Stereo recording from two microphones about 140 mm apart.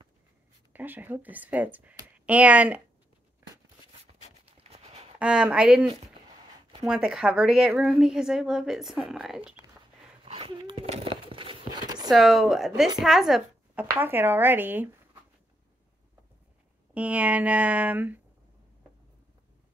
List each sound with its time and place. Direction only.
0.7 s speech: 15° right (ahead or behind)
3.9 s writing: 45° right (ahead or behind)
5.2 s a woman's voice: 5° right (ahead or behind)
10.2 s a sound: 40° right (ahead or behind)
12.1 s a woman's voice: centre (ahead or behind)
13.9 s speech: 15° right (ahead or behind)
16.9 s speech: 10° right (ahead or behind)